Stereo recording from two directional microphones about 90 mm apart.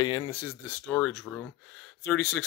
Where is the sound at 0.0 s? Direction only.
45° left (ahead or behind).